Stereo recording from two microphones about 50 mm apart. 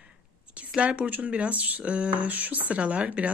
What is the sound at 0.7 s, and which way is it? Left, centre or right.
Speech, right.